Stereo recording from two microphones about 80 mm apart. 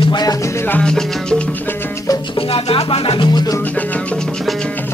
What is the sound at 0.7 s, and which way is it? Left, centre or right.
Music, centre.